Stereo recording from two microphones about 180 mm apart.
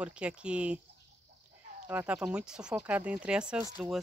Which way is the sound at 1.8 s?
5° right (ahead or behind).